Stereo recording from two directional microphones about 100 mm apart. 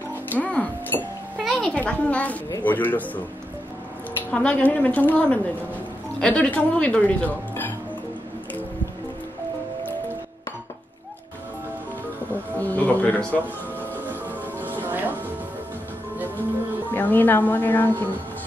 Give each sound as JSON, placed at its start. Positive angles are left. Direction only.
{"t": 0.3, "sound": "speech", "side_deg": 15}
{"t": 1.4, "sound": "music", "side_deg": 5}
{"t": 1.8, "sound": "speech", "side_deg": 15}
{"t": 4.3, "sound": "speech", "side_deg": 10}
{"t": 12.5, "sound": "music", "side_deg": 15}
{"t": 14.6, "sound": "music", "side_deg": -20}
{"t": 16.9, "sound": "speech", "side_deg": 15}